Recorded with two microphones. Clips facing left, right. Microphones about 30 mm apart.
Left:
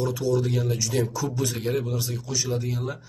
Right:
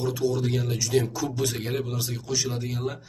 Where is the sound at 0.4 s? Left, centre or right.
Centre.